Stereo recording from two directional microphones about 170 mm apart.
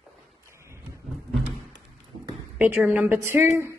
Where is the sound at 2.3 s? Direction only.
5° right (ahead or behind).